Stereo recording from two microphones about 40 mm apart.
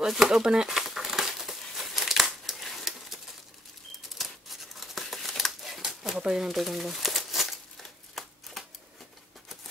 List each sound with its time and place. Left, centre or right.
0.0 s speech: centre
0.7 s crumpling: centre
4.2 s scissors: centre
6.1 s speech: centre
6.5 s crumpling: centre